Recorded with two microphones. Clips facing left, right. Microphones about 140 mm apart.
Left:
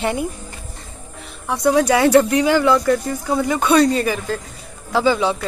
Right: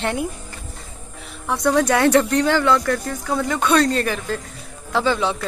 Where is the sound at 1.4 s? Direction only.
5° left (ahead or behind).